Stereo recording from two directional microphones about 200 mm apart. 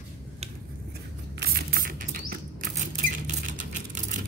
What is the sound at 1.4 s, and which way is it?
Patter, 50° right (ahead or behind).